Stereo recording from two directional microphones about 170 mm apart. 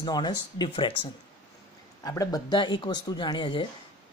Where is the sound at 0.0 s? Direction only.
25° left (ahead or behind).